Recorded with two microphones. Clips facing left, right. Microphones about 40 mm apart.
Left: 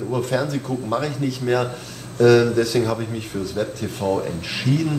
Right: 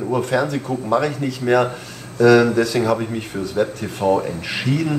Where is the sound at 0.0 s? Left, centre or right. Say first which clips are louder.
Right 3 dB; centre.